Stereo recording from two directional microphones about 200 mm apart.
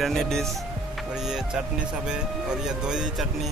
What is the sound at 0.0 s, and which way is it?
Speech, centre (ahead or behind).